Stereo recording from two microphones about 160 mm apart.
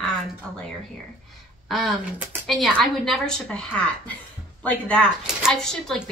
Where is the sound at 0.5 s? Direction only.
5° left (ahead or behind).